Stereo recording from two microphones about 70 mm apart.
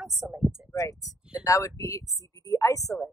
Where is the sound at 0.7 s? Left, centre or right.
Left.